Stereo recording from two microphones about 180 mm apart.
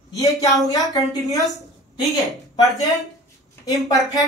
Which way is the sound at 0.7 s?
20° left (ahead or behind).